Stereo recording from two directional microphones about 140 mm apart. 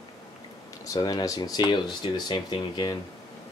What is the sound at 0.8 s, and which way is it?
Speech, 25° left (ahead or behind).